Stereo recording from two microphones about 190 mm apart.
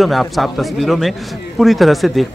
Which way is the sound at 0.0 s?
Centre (ahead or behind).